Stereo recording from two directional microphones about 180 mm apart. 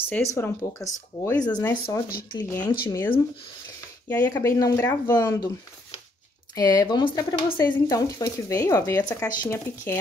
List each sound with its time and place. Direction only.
0.1 s speech: 15° left (ahead or behind)
6.5 s speech: 20° left (ahead or behind)